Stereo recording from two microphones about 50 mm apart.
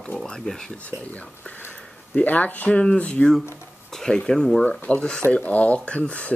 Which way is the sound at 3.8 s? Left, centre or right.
Centre.